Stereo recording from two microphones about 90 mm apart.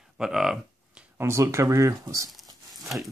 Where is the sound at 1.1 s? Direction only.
30° right (ahead or behind).